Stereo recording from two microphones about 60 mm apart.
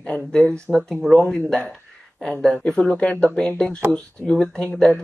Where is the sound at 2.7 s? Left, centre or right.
Centre.